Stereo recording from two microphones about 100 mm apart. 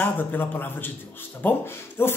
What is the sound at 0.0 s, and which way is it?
Speech, 20° left (ahead or behind).